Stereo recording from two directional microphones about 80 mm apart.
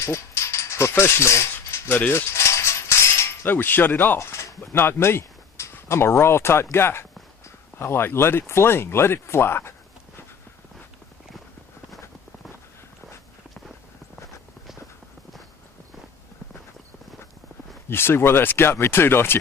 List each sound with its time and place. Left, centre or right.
0.0 s a sound: left
2.0 s speech: left
2.3 s mechanisms: left
3.4 s speech: left
17.8 s speech: left